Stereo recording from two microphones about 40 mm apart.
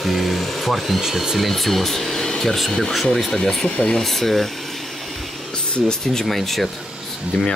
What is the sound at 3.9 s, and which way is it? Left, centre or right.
Speech, centre.